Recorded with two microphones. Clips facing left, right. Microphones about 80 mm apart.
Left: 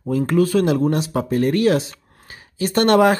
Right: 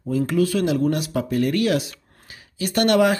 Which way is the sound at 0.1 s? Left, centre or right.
Left.